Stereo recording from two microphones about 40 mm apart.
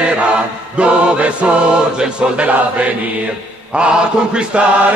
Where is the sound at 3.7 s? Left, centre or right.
Right.